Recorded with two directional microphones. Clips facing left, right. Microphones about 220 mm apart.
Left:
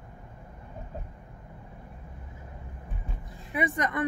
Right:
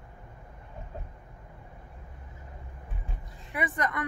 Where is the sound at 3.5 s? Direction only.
20° left (ahead or behind).